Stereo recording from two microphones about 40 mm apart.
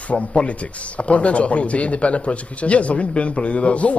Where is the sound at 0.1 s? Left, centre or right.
Left.